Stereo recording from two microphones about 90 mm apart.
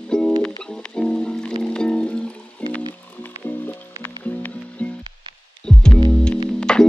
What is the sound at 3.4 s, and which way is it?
Music, 20° left (ahead or behind).